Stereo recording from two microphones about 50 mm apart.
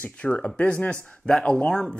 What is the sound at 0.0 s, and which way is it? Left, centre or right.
Speech, left.